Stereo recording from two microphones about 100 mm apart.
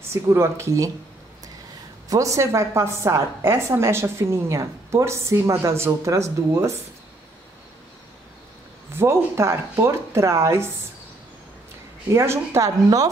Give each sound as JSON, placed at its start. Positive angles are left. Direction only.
{"t": 0.1, "sound": "a woman's voice", "side_deg": -25}
{"t": 2.0, "sound": "a woman's voice", "side_deg": -35}
{"t": 8.9, "sound": "a woman's voice", "side_deg": -25}
{"t": 12.1, "sound": "a woman's voice", "side_deg": -30}